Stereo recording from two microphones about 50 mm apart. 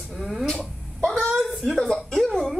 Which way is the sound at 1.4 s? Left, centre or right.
Centre.